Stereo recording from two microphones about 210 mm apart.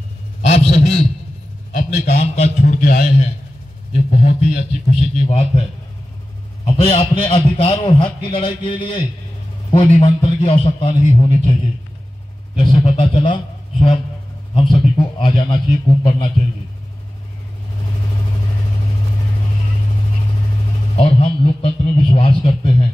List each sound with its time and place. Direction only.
0.4 s a sound: 30° left (ahead or behind)
1.7 s a man's voice: 35° left (ahead or behind)
6.6 s a man's voice: 30° left (ahead or behind)
12.7 s a man's voice: 25° left (ahead or behind)
20.9 s a man's voice: 30° left (ahead or behind)